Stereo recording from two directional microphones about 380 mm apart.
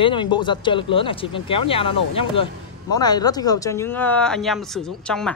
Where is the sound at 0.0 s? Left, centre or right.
Centre.